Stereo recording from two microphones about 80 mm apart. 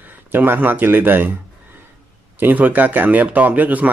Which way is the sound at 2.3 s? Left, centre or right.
Right.